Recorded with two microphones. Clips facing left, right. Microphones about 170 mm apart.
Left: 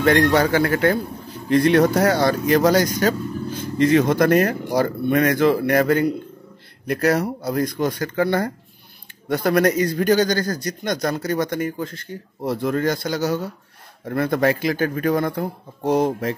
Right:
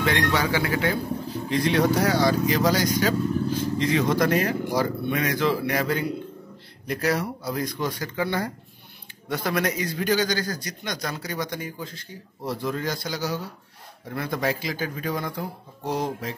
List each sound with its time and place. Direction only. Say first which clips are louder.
0.0 s a man's voice: left 7 dB; 50° left (ahead or behind)